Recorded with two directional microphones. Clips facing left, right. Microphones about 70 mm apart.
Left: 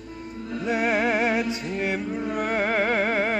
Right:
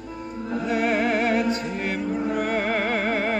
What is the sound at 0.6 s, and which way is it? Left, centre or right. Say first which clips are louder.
Music: even; centre.